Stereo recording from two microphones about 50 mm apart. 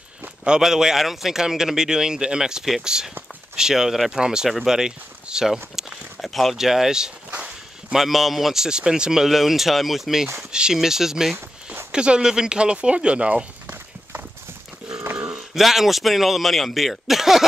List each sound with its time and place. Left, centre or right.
0.4 s a man's voice: centre
4.6 s a sound: centre
6.5 s a man's voice: centre
7.2 s a sound: right
7.9 s a man's voice: centre
11.9 s speech: centre
15.3 s speech: centre